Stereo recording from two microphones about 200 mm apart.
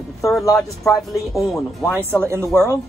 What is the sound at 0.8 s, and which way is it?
Speech, centre (ahead or behind).